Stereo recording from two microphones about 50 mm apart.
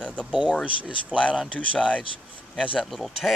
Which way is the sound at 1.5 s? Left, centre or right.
Left.